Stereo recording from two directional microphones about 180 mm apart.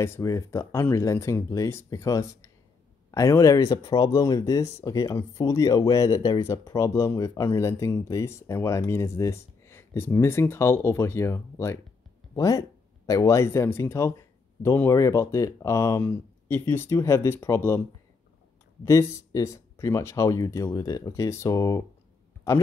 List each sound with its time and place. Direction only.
0.0 s speech: 15° left (ahead or behind)
18.9 s speech: 15° left (ahead or behind)